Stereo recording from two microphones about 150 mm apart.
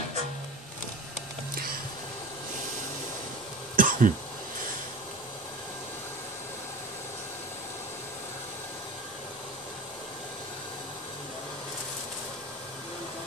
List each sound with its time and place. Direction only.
1.5 s music: 80° right
3.7 s cough: 65° right (ahead or behind)